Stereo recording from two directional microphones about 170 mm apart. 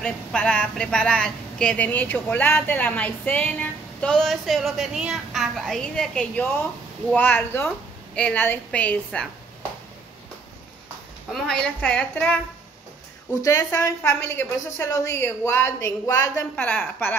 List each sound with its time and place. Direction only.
0.0 s a woman's voice: 5° left (ahead or behind)
11.4 s a woman's voice: 5° left (ahead or behind)
13.3 s a woman's voice: 20° left (ahead or behind)